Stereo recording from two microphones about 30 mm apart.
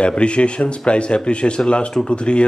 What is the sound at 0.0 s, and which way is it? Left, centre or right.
Speech, left.